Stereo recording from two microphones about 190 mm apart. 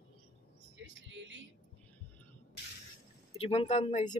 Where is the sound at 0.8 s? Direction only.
70° right (ahead or behind).